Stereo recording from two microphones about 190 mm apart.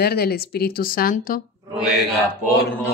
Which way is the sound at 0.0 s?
55° left (ahead or behind).